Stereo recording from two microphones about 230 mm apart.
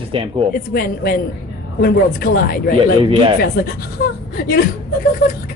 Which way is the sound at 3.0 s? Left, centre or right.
Right.